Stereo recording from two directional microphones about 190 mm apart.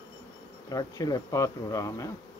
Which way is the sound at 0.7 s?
20° left (ahead or behind).